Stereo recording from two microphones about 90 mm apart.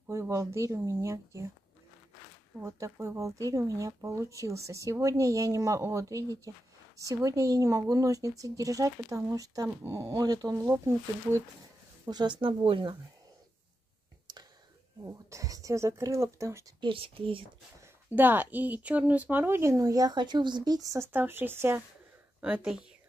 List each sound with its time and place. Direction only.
0.1 s speech: 35° right (ahead or behind)
2.6 s speech: 35° right (ahead or behind)
12.1 s speech: 55° right (ahead or behind); by 12.9 s 75° right (ahead or behind)
15.0 s speech: 35° right (ahead or behind)
16.8 s speech: 80° right
18.1 s a woman's voice: 20° right (ahead or behind); by 21.1 s 35° right (ahead or behind)
21.1 s a woman's voice: 25° right (ahead or behind)